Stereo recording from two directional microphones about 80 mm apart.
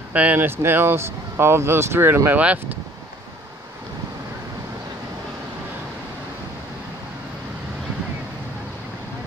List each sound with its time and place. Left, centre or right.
0.1 s speech: centre